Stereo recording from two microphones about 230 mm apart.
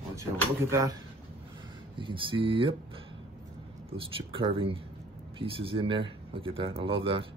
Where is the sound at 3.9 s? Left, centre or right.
Right.